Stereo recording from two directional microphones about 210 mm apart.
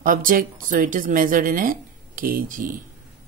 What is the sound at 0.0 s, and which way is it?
A woman's voice, 40° right (ahead or behind).